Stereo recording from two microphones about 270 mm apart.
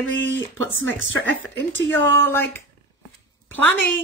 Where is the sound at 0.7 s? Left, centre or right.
Right.